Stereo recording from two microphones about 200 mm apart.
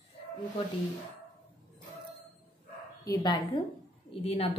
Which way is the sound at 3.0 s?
20° left (ahead or behind).